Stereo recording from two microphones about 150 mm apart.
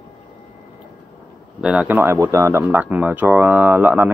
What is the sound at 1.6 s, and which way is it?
Speech, 5° right (ahead or behind).